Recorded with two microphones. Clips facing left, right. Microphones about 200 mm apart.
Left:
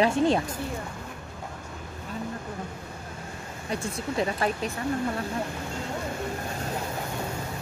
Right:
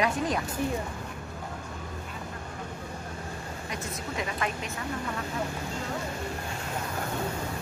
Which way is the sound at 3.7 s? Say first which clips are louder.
Left 7 dB; 30° left (ahead or behind).